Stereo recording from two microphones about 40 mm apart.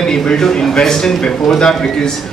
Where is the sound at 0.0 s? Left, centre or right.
Centre.